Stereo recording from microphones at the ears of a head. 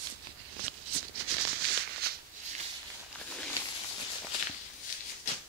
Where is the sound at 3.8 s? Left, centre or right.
Left.